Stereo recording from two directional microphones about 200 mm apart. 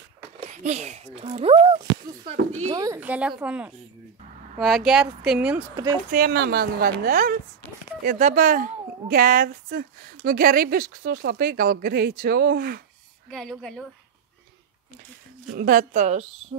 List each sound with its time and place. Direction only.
0.4 s speech: 35° right (ahead or behind)
2.7 s speech: 20° right (ahead or behind)
3.0 s a woman's voice: 5° right (ahead or behind)
6.1 s speech: 50° right (ahead or behind)
13.3 s speech: centre (ahead or behind)
15.5 s speech: 45° right (ahead or behind)